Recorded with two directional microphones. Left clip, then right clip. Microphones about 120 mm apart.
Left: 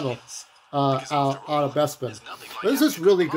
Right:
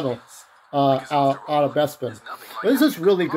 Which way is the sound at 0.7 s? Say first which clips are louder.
Right 4 dB; 15° left (ahead or behind).